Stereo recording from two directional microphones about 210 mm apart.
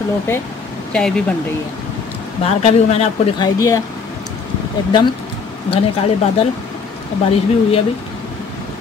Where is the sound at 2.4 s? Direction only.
30° left (ahead or behind).